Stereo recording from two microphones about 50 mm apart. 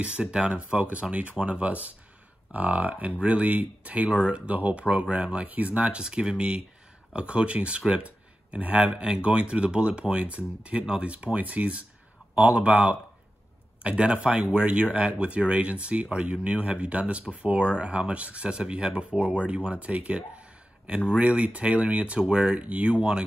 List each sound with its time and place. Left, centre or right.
0.0 s speech: centre